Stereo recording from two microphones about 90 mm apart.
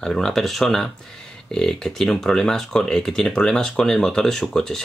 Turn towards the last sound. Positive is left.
turn(degrees=5)  # may be behind; listen again after turning